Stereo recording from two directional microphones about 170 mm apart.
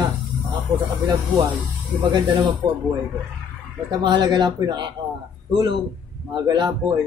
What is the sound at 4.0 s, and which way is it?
Speech, 25° right (ahead or behind).